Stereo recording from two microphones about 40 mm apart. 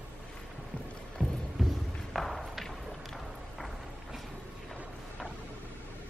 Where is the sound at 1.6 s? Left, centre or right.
Centre.